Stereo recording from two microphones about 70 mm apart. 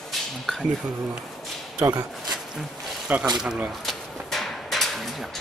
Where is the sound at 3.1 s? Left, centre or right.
Right.